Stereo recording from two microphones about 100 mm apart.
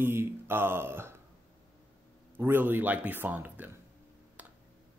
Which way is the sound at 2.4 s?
20° right (ahead or behind).